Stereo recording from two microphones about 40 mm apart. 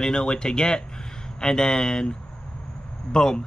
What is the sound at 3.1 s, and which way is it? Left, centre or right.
Speech, centre.